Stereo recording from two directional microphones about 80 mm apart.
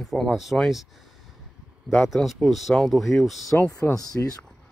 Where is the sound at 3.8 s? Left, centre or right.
Left.